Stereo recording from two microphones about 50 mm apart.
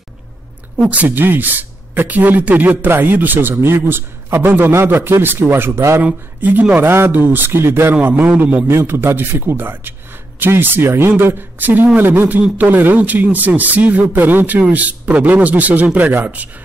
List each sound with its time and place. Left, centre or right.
0.9 s a man's voice: right
6.6 s a man's voice: right
7.4 s a man's voice: right
7.9 s a man's voice: right
8.6 s a man's voice: right